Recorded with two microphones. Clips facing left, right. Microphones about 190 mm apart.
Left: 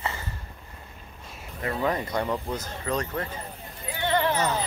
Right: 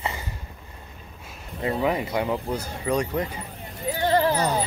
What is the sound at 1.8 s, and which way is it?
Speech, 10° right (ahead or behind).